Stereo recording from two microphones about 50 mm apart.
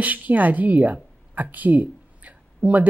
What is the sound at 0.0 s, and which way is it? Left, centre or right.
A woman's voice, right.